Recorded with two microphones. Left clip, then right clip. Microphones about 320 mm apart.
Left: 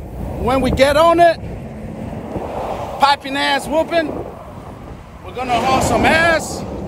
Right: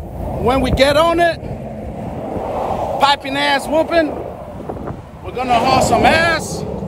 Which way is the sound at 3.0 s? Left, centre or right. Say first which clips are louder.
Left 1 dB; centre.